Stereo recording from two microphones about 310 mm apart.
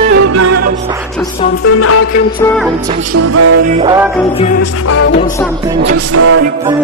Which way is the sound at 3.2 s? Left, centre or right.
Right.